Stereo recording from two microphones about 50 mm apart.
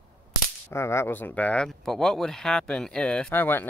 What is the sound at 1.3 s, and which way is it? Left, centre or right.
Speech, left.